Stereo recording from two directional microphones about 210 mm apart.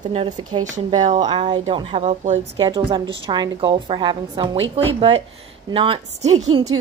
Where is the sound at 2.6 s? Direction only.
20° right (ahead or behind).